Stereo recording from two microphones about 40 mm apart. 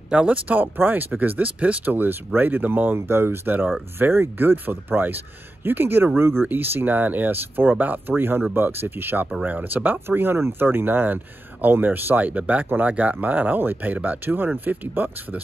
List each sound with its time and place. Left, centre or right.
0.1 s speech: right
0.6 s speech: right
2.0 s speech: right
3.4 s speech: right
4.0 s speech: right
8.2 s speech: right
9.9 s speech: right
14.2 s speech: right